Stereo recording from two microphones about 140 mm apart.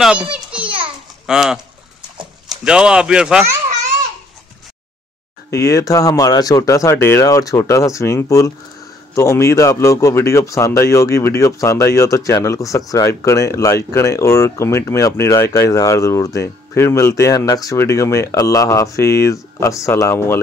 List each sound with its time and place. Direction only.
0.0 s a child's voice: 5° right (ahead or behind)
0.7 s children playing: 40° right (ahead or behind)
1.2 s speech: 5° right (ahead or behind)
5.5 s speech: 25° left (ahead or behind)